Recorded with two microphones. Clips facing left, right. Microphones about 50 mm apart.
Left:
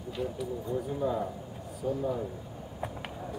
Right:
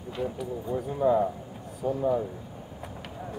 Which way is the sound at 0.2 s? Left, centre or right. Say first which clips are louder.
Right 2 dB; centre.